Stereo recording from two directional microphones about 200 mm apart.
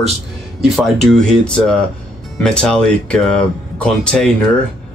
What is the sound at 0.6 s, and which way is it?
Speech, centre (ahead or behind).